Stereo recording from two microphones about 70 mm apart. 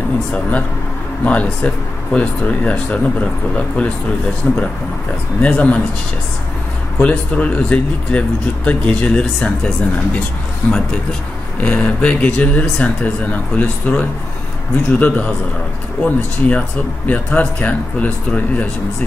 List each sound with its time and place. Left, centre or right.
0.3 s speech: centre
4.4 s speech: left
5.4 s speech: centre
7.0 s speech: centre
11.6 s speech: centre